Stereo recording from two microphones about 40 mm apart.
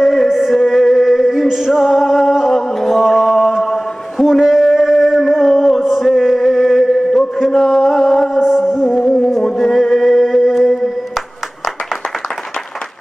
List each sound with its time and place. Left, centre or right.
0.0 s music: centre
2.3 s chant: centre
8.4 s music: centre
9.0 s music: centre
9.6 s music: centre